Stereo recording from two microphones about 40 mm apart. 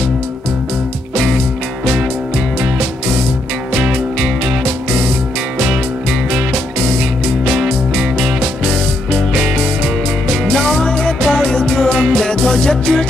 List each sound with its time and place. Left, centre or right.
3.8 s music: centre
7.5 s music: centre
11.2 s music: centre
11.9 s music: centre
12.3 s music: left